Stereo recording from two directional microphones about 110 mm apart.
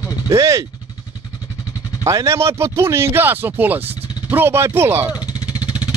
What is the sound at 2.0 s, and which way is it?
Speech, 25° right (ahead or behind).